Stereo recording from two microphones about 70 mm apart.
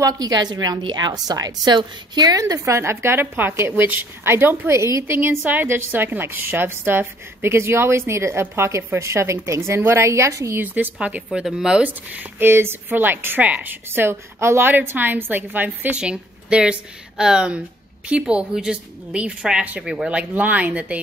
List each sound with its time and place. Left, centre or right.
0.0 s a woman's voice: right
5.4 s a woman's voice: right
10.6 s a woman's voice: right
16.0 s a woman's voice: centre